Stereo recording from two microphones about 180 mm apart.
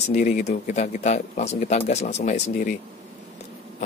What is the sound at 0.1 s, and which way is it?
Speech, 40° left (ahead or behind).